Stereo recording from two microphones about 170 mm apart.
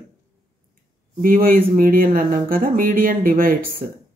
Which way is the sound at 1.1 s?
55° right (ahead or behind).